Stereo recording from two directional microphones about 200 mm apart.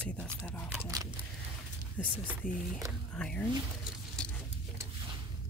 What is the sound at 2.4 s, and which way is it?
Speech, 40° left (ahead or behind).